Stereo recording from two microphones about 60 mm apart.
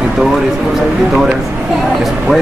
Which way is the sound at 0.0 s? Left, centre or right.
Centre.